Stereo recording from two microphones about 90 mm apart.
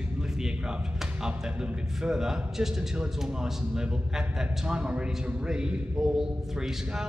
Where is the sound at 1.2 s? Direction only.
10° right (ahead or behind).